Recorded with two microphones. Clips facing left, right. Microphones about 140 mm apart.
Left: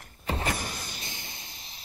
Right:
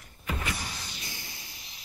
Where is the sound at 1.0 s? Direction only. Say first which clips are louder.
Left 2 dB; 25° left (ahead or behind).